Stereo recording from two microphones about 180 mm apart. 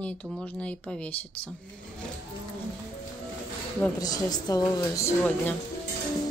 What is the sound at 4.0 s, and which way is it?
A woman's voice, 20° left (ahead or behind).